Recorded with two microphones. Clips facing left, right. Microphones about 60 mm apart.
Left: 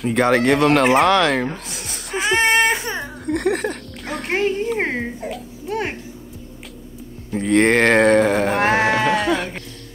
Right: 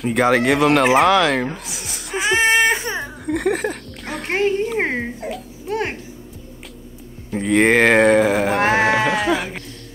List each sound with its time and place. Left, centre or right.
0.0 s speech: centre
7.2 s speech: centre